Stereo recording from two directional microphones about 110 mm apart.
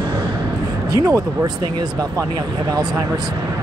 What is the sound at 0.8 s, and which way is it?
Speech, 30° right (ahead or behind).